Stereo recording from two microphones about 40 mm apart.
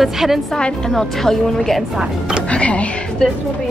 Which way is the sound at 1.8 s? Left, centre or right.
Centre.